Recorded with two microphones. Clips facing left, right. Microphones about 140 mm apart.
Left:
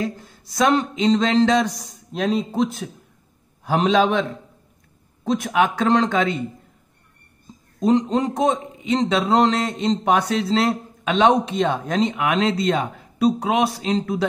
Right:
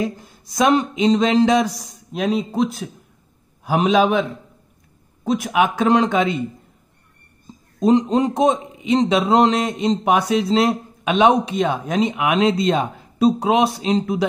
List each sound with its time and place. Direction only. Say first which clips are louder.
0.0 s a man's voice: right 2 dB; 15° right (ahead or behind)
7.8 s a man's voice: right 3 dB; 20° right (ahead or behind)